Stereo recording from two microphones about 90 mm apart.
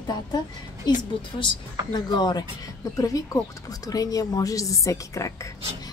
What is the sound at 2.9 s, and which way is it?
A woman's voice, 40° left (ahead or behind).